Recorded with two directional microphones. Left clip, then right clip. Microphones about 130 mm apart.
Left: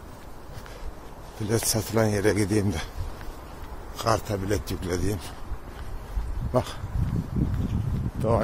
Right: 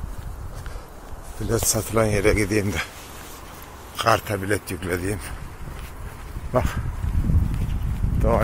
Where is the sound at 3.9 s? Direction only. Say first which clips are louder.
Right 5 dB; centre (ahead or behind).